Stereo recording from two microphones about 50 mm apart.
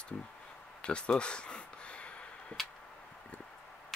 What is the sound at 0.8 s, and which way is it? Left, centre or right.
Arrow, centre.